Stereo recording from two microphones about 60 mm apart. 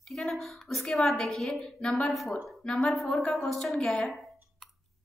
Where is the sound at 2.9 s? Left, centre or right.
Centre.